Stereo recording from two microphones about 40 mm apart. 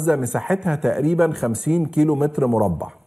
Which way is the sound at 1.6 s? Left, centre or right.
Centre.